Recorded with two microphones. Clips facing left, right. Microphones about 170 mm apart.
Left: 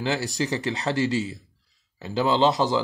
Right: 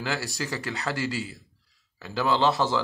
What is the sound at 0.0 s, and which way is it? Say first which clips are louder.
Speech: left 5 dB; 20° left (ahead or behind).